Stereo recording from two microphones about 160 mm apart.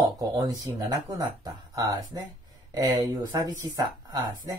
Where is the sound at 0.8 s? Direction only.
25° right (ahead or behind).